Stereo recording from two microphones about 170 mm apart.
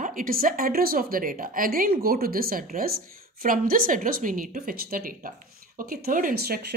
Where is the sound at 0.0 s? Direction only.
55° right (ahead or behind).